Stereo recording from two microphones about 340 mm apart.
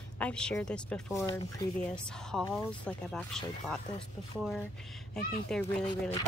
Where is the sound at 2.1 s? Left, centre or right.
Centre.